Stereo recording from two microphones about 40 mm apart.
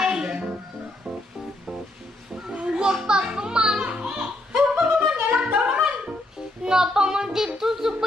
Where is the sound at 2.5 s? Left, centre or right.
Right.